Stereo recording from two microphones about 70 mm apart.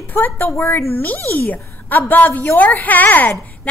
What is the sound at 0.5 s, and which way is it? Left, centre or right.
A woman's voice, left.